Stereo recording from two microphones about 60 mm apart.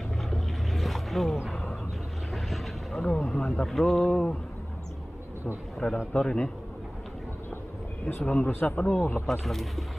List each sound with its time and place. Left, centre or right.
0.2 s boat: centre
2.3 s vehicle: centre
3.5 s a man's voice: centre
5.8 s a man's voice: centre
8.3 s a man's voice: left
9.4 s speech: centre